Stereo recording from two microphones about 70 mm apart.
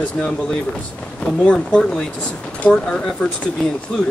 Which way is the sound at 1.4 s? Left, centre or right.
Centre.